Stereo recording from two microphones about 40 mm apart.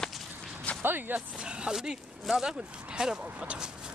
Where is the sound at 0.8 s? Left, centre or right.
Right.